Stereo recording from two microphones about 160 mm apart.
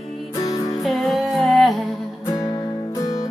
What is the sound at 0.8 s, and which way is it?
Music, centre (ahead or behind).